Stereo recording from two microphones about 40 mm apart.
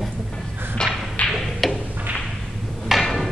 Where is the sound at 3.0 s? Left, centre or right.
Centre.